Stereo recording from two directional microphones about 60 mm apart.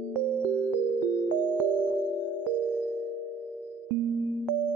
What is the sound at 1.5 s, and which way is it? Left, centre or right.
Music, right.